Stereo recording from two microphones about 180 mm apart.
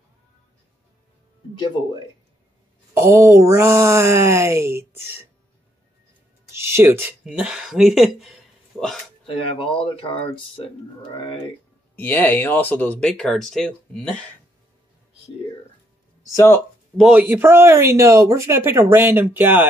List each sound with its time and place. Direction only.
3.0 s speech: 15° right (ahead or behind)
6.5 s speech: 15° right (ahead or behind)
9.2 s speech: 30° left (ahead or behind)
11.9 s speech: 10° left (ahead or behind)
16.9 s speech: 5° right (ahead or behind)